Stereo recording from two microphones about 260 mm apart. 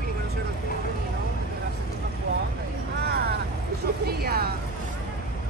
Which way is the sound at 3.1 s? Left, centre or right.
Right.